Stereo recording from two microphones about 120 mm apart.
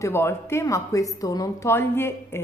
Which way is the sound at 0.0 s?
20° left (ahead or behind).